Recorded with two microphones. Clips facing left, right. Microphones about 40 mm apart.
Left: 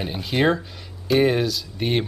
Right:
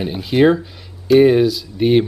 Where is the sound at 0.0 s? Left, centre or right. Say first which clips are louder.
Right 7 dB; centre.